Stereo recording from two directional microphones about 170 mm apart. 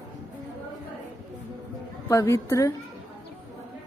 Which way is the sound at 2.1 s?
15° left (ahead or behind).